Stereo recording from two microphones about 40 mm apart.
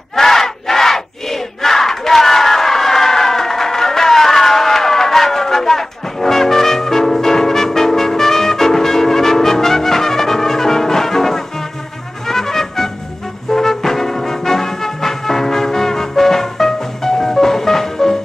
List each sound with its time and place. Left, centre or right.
0.1 s battle cry: centre
12.3 s brass instrument: centre
13.5 s music: centre